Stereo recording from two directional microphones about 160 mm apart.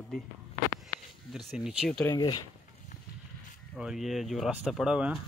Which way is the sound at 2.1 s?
25° left (ahead or behind).